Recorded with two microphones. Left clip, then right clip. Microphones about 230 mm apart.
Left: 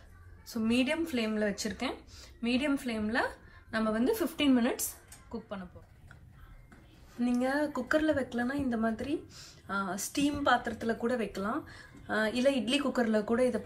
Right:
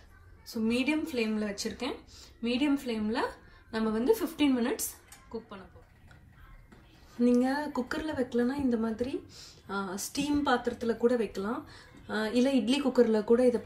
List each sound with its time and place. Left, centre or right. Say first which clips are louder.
0.5 s a woman's voice: even; right
7.2 s a woman's voice: right 3 dB; right